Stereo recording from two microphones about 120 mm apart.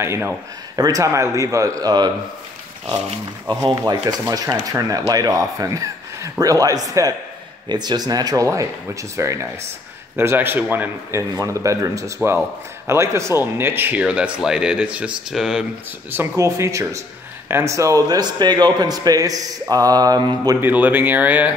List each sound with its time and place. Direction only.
0.0 s a man's voice: 20° right (ahead or behind)
0.7 s a man's voice: 30° right (ahead or behind)
3.8 s a man's voice: 35° right (ahead or behind); by 15.6 s 5° right (ahead or behind)
16.1 s a man's voice: 20° right (ahead or behind)
20.6 s speech: 15° right (ahead or behind)